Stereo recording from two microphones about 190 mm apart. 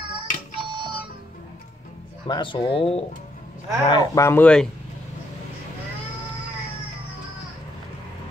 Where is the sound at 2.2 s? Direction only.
25° left (ahead or behind).